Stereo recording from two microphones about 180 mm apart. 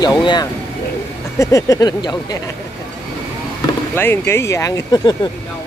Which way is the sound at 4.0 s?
15° left (ahead or behind).